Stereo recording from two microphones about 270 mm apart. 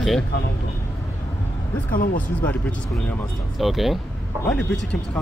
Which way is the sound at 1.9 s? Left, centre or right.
Left.